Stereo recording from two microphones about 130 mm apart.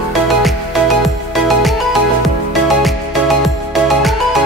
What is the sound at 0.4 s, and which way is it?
Music, centre (ahead or behind).